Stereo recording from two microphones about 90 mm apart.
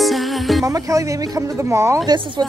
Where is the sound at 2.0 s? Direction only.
65° right (ahead or behind).